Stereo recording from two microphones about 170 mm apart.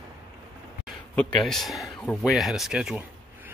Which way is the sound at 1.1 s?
Centre (ahead or behind).